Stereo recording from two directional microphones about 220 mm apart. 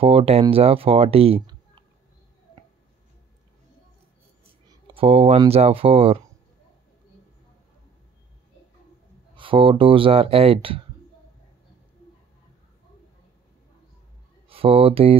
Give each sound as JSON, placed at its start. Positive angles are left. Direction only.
{"t": 0.0, "sound": "speech", "side_deg": -25}
{"t": 4.6, "sound": "speech", "side_deg": -20}
{"t": 9.3, "sound": "speech", "side_deg": -25}
{"t": 14.5, "sound": "speech", "side_deg": -25}